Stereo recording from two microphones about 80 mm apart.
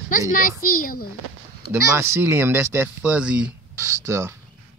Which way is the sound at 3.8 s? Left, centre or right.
Right.